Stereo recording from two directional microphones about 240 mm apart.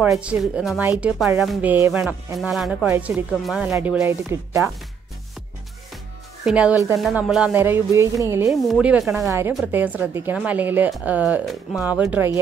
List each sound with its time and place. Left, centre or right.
0.0 s speech: centre
6.4 s speech: centre